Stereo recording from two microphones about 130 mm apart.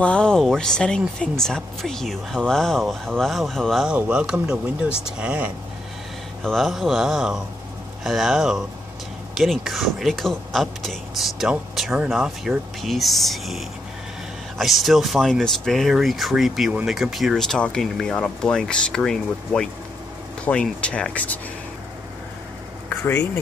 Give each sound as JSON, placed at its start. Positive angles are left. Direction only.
{"t": 0.0, "sound": "speech", "side_deg": 5}
{"t": 22.8, "sound": "speech", "side_deg": 15}